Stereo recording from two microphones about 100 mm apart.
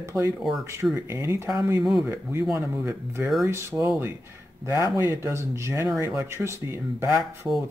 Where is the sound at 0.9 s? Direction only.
25° right (ahead or behind).